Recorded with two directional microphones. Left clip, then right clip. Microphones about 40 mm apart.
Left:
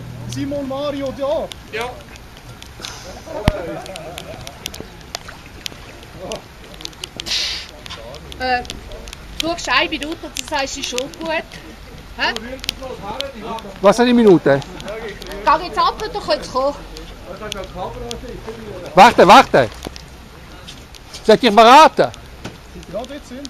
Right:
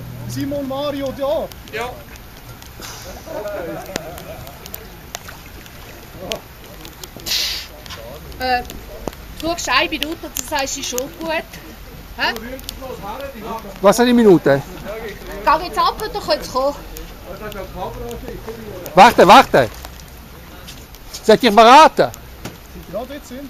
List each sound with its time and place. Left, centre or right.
0.3 s speech: right
1.7 s speech: left
2.8 s speech: centre
3.5 s speech: left
7.2 s a sound: centre
8.4 s speech: centre
12.8 s speech: left
13.8 s speech: centre
14.8 s a sound: left
15.4 s speech: centre
17.8 s speech: left
18.9 s speech: centre
21.3 s speech: centre
22.9 s speech: right